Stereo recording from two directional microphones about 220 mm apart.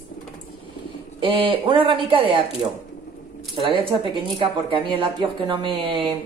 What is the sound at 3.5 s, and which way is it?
Speech, 25° right (ahead or behind).